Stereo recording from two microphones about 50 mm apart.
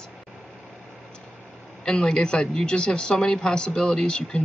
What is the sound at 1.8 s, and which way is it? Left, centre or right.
Speech, centre.